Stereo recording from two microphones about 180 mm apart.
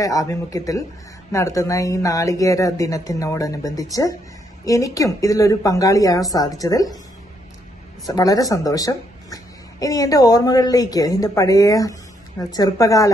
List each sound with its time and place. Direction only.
0.0 s speech: 20° left (ahead or behind)
8.1 s speech: 20° left (ahead or behind)